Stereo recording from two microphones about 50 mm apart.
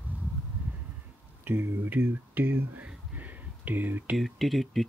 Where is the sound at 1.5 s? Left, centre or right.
Right.